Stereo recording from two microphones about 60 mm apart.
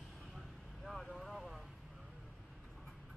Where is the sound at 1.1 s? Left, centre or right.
Centre.